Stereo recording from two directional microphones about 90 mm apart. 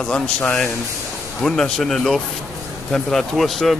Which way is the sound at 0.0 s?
15° left (ahead or behind).